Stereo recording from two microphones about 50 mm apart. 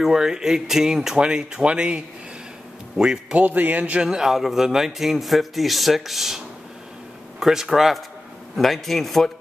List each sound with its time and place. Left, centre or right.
0.0 s speech: centre
3.3 s a man's voice: right
4.0 s a man's voice: centre